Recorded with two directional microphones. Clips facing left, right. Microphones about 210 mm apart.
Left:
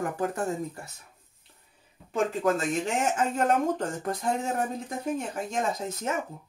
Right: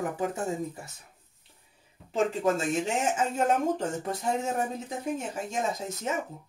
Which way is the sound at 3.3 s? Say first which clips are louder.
Left 1 dB; 5° right (ahead or behind).